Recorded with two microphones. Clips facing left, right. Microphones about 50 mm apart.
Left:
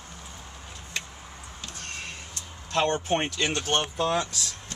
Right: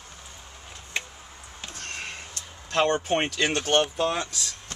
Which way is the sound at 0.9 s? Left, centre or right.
Right.